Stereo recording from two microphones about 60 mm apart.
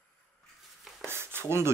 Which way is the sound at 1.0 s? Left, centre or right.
Right.